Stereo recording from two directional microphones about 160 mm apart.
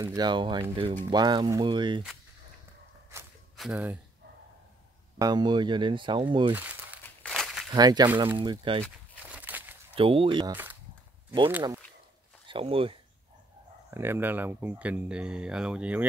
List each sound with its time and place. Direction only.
0.0 s speech: 25° right (ahead or behind)
3.1 s a sound: 15° right (ahead or behind)
3.5 s speech: 5° right (ahead or behind)
5.2 s speech: 25° right (ahead or behind)
6.5 s crumpling: 10° right (ahead or behind)
7.2 s a sound: centre (ahead or behind)
7.7 s speech: 25° right (ahead or behind)
9.3 s a sound: 10° right (ahead or behind)
9.9 s speech: 35° right (ahead or behind)
10.5 s speech: 10° right (ahead or behind)
12.4 s speech: 35° right (ahead or behind)
13.8 s speech: 15° right (ahead or behind)